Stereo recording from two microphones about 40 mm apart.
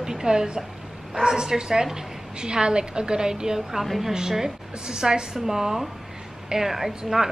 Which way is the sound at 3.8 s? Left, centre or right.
Centre.